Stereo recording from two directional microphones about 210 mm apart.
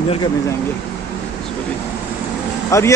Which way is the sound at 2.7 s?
15° left (ahead or behind).